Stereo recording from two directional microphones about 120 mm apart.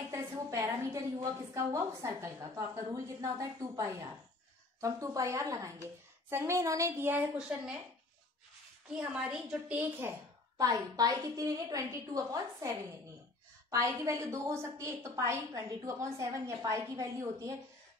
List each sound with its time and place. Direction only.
0.1 s a sound: 25° right (ahead or behind)
1.5 s a woman's voice: 25° right (ahead or behind)
9.1 s a woman's voice: 10° right (ahead or behind)
10.6 s a woman's voice: 30° right (ahead or behind)